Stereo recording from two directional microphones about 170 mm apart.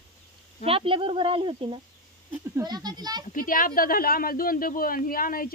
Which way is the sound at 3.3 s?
55° left (ahead or behind).